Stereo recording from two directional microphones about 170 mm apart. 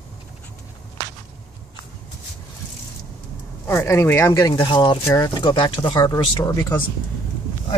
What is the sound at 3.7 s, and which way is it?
Speech, 15° left (ahead or behind).